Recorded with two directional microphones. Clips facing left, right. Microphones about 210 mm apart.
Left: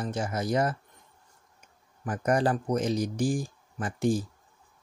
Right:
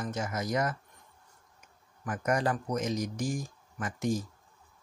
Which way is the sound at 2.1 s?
30° left (ahead or behind).